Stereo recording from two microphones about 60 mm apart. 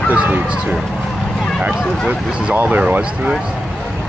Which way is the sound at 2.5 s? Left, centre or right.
Right.